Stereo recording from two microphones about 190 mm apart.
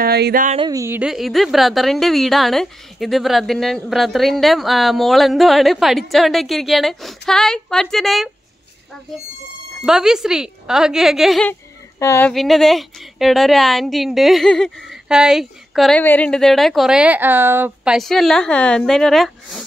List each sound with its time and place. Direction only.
0.0 s speech: 55° right (ahead or behind)
0.6 s a woman's voice: 20° right (ahead or behind); by 8.3 s centre (ahead or behind)
9.8 s a woman's voice: 5° right (ahead or behind)
12.0 s speech: 15° left (ahead or behind)
12.3 s a woman's voice: centre (ahead or behind)